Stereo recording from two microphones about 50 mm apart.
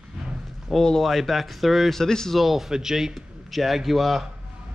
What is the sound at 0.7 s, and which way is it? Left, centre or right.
Speech, centre.